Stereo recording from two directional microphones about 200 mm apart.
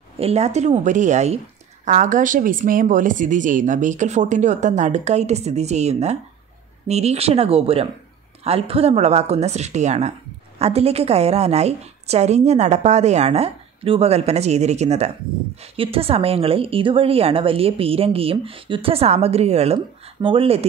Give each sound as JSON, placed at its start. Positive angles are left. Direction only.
{"t": 0.2, "sound": "a woman's voice", "side_deg": -30}